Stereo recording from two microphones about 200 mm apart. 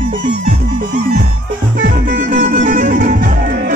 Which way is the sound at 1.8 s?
40° right (ahead or behind).